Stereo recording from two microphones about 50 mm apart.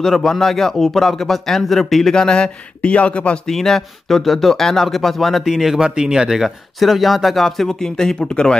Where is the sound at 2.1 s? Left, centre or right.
Centre.